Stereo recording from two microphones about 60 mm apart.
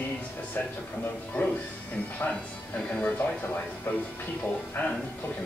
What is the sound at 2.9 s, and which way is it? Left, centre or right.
Speech, left.